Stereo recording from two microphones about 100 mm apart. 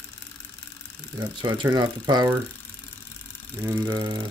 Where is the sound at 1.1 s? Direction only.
45° right (ahead or behind).